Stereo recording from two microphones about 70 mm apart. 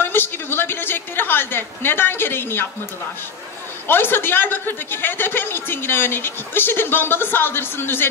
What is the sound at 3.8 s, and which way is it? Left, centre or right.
A man's voice, left.